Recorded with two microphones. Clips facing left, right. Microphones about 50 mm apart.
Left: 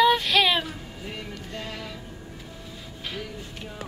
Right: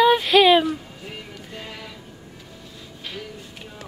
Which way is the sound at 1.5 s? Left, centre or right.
Centre.